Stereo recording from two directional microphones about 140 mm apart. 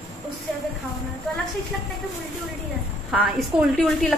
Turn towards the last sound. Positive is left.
turn(degrees=5)  # may be behind; listen again after turning